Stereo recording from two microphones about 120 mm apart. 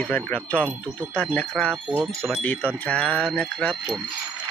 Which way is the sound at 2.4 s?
15° left (ahead or behind).